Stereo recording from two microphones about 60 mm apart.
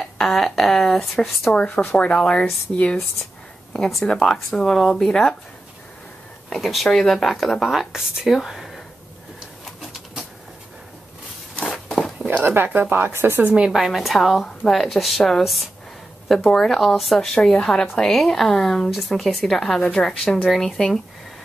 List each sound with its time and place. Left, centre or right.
0.0 s speech: centre
1.5 s a woman's voice: centre
3.9 s speech: centre
6.5 s speech: centre
11.5 s walk: centre
12.4 s speech: right
13.7 s a woman's voice: centre